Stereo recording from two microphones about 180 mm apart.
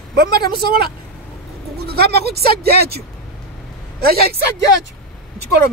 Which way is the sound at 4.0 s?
60° right (ahead or behind).